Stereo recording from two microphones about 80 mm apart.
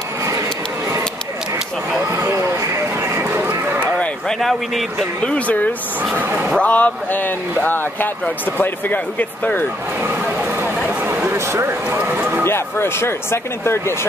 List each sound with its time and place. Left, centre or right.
2.1 s run: right
4.0 s a sound: centre
5.2 s speech: centre
10.2 s a sound: right
12.1 s speech: right
12.4 s speech: left